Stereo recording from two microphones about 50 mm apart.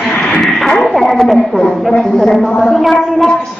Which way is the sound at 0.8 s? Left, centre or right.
Centre.